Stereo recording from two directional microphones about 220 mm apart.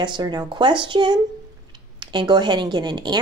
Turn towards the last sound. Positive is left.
turn(degrees=-20)  # may be behind; listen again after turning